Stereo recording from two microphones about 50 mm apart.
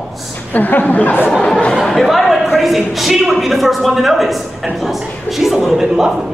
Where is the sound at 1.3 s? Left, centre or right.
Centre.